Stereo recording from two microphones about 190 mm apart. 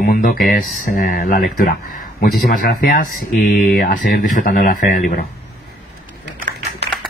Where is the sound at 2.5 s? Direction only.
45° left (ahead or behind).